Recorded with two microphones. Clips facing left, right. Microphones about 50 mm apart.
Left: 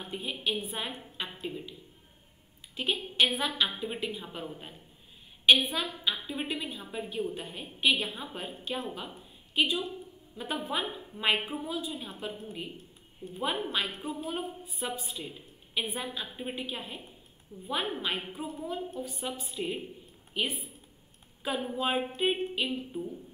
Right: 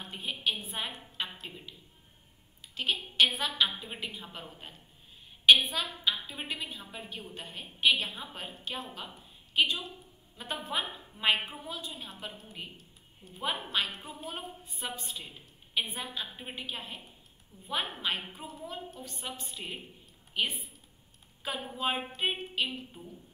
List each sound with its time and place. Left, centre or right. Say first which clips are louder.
0.1 s a woman's voice: left 1 dB; centre
1.2 s a sound: left 3 dB; centre
2.7 s a woman's voice: left 1 dB; centre
10.3 s a woman's voice: left 2 dB; centre
17.5 s a woman's voice: left 2 dB; centre